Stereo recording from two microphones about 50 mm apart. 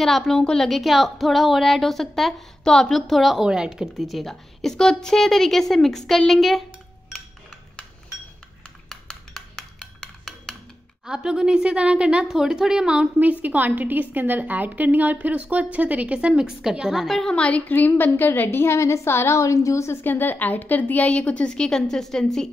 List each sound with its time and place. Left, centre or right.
0.0 s a woman's voice: centre
0.7 s a woman's voice: centre
3.4 s a woman's voice: centre
8.8 s a sound: centre
11.1 s a woman's voice: centre
13.2 s a woman's voice: right; by 17.2 s centre
17.2 s a woman's voice: left
17.6 s a woman's voice: left
20.0 s a woman's voice: left
21.5 s a woman's voice: centre